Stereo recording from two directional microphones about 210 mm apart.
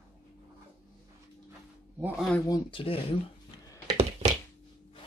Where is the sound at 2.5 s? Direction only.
25° left (ahead or behind).